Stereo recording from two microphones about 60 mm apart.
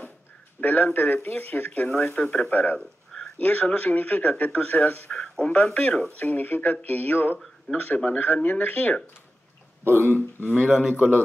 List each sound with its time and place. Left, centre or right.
0.6 s speech: left
2.1 s speech: centre
2.5 s speech: left
5.4 s speech: left
9.8 s speech: right
10.7 s a man's voice: centre